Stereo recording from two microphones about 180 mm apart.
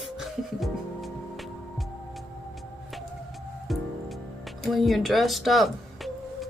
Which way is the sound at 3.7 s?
Centre (ahead or behind).